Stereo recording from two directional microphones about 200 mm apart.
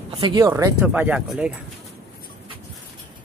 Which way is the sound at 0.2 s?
15° right (ahead or behind).